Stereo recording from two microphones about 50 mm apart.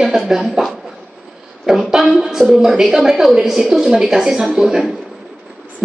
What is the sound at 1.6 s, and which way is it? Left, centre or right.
Speech, centre.